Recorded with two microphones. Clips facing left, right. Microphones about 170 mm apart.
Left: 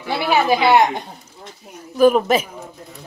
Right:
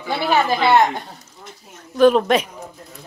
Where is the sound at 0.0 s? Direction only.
5° left (ahead or behind).